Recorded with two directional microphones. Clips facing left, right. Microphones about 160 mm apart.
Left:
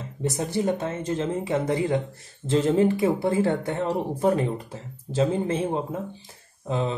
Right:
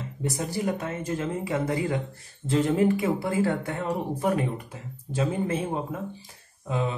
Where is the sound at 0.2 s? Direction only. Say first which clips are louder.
Left 3 dB; 25° left (ahead or behind).